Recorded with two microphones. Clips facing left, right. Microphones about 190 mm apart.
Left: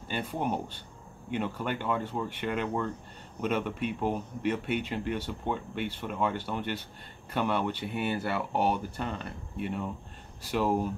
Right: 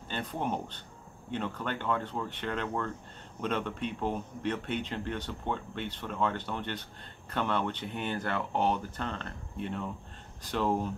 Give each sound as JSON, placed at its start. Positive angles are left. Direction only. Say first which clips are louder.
{"t": 0.1, "sound": "speech", "louder": "left 2 dB", "side_deg": 10}